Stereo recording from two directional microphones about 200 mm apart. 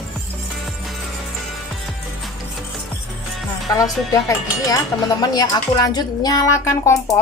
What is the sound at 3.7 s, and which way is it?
Speech, 15° left (ahead or behind).